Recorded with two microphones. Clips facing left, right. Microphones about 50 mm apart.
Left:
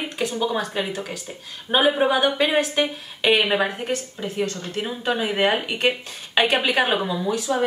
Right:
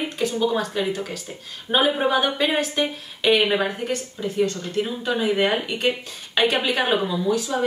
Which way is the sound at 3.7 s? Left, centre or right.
Left.